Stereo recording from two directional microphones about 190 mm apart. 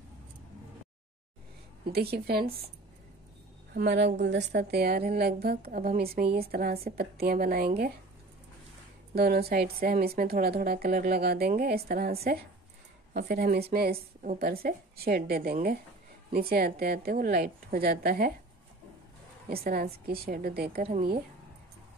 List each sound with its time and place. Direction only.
1.9 s a woman's voice: 55° right (ahead or behind)
3.7 s a woman's voice: 65° right (ahead or behind)
9.1 s a woman's voice: 55° right (ahead or behind)
19.5 s a woman's voice: 50° right (ahead or behind)